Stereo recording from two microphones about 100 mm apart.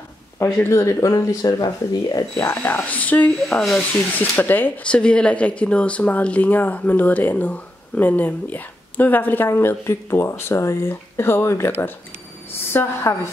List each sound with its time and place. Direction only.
0.6 s speech: 25° left (ahead or behind); by 2.2 s 40° left (ahead or behind)
2.3 s speech: 20° left (ahead or behind)
12.7 s a woman's voice: 25° left (ahead or behind)